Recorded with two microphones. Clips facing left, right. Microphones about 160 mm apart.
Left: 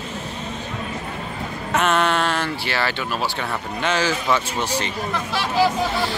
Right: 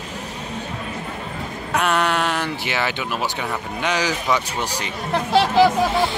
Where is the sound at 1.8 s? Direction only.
10° right (ahead or behind).